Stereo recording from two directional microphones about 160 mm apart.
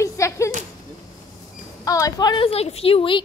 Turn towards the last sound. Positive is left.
turn(degrees=35)  # may be behind; listen again after turning